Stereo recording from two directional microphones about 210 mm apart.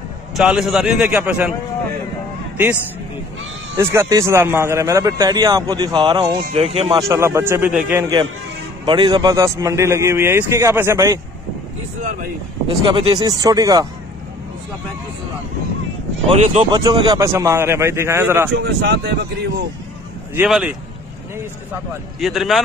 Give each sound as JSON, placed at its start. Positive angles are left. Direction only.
{"t": 0.4, "sound": "a man's voice", "side_deg": -5}
{"t": 3.7, "sound": "a man's voice", "side_deg": -10}
{"t": 7.1, "sound": "a man's voice", "side_deg": -15}
{"t": 12.0, "sound": "speech", "side_deg": -35}
{"t": 12.8, "sound": "speech", "side_deg": -25}
{"t": 16.3, "sound": "a man's voice", "side_deg": -30}
{"t": 18.5, "sound": "speech", "side_deg": -55}
{"t": 20.3, "sound": "a man's voice", "side_deg": -5}
{"t": 22.2, "sound": "a man's voice", "side_deg": 0}